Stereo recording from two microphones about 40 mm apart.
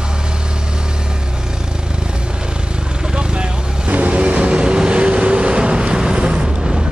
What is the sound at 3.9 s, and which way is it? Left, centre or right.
Vehicle, right.